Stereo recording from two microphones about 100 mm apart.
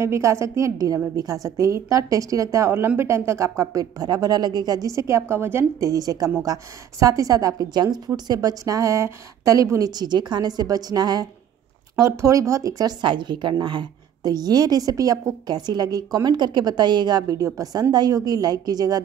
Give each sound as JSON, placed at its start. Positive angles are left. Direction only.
{"t": 0.0, "sound": "a woman's voice", "side_deg": -30}
{"t": 11.9, "sound": "speech", "side_deg": -30}
{"t": 13.0, "sound": "a woman's voice", "side_deg": -50}